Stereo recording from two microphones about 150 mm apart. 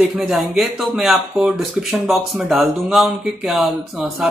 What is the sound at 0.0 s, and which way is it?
Speech, 5° right (ahead or behind).